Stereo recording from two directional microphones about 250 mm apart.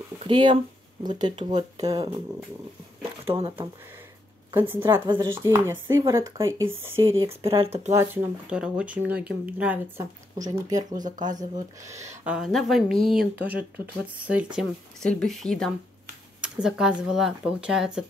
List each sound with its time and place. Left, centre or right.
0.2 s speech: centre
3.3 s speech: right
4.5 s a woman's voice: centre
7.2 s speech: right
7.9 s speech: centre
11.0 s speech: right
11.3 s speech: centre
12.3 s speech: centre